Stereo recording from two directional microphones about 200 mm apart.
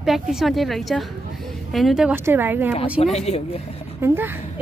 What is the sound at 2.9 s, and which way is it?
Speech, 30° left (ahead or behind).